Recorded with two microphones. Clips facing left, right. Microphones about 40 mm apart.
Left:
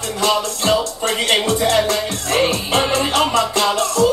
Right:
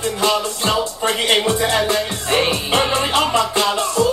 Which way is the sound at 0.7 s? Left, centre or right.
Centre.